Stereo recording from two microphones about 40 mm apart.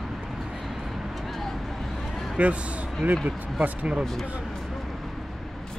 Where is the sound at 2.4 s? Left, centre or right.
Right.